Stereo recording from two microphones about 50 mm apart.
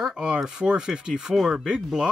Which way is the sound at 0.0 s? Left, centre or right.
Centre.